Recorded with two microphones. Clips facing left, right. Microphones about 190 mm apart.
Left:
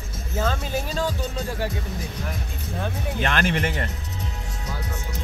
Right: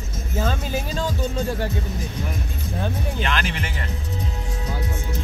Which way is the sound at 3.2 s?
50° left (ahead or behind).